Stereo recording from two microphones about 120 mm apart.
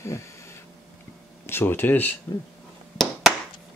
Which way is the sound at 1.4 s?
20° left (ahead or behind).